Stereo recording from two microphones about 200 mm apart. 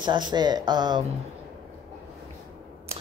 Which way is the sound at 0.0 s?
20° right (ahead or behind).